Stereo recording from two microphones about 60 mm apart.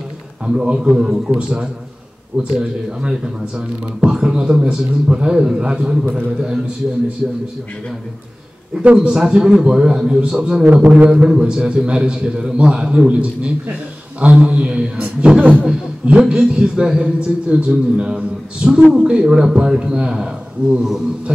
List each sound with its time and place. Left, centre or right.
0.5 s speech: centre
9.0 s a man's voice: centre
11.1 s speech: centre